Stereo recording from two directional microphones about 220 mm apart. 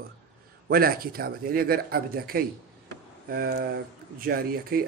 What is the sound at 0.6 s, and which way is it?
Speech, 40° right (ahead or behind).